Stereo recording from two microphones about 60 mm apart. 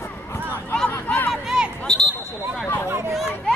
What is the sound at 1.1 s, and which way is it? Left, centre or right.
Speech, left.